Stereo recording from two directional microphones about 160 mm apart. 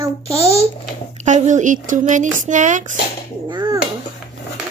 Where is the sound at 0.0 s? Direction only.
20° right (ahead or behind).